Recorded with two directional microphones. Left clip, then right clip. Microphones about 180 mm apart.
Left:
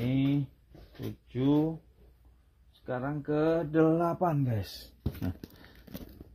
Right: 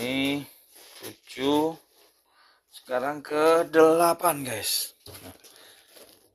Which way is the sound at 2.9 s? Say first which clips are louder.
Right 5 dB; 65° right (ahead or behind).